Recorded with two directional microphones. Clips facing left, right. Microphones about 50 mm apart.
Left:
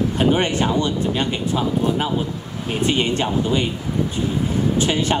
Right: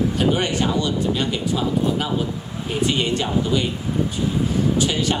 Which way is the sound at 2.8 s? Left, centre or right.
Left.